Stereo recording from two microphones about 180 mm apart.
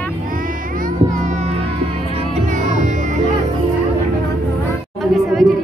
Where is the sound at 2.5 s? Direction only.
45° right (ahead or behind).